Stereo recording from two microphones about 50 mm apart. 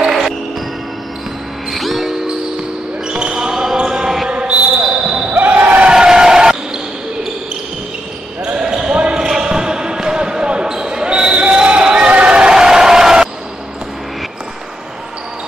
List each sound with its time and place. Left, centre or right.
1.7 s music: centre
3.1 s basketball bounce: centre
4.3 s basketball bounce: right
5.3 s basketball bounce: right
5.9 s vehicle: centre
8.5 s basketball bounce: centre
12.1 s a sound: right